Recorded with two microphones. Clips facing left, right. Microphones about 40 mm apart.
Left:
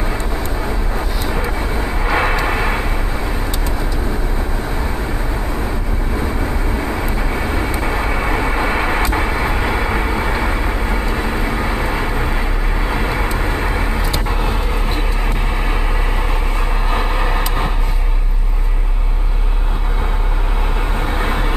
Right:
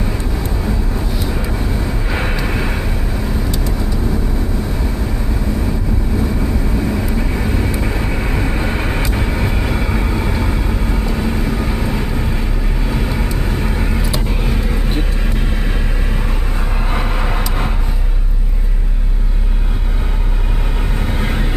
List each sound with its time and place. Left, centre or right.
1.3 s vehicle: left
6.1 s vehicle: left
16.9 s vehicle: centre
21.0 s vehicle: centre